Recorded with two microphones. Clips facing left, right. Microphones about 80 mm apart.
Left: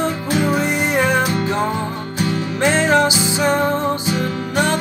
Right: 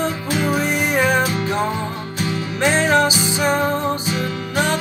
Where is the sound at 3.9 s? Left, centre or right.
Left.